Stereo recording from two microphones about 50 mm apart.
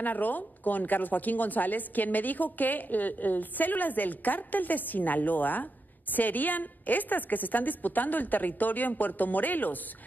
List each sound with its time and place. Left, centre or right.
0.0 s a woman's voice: left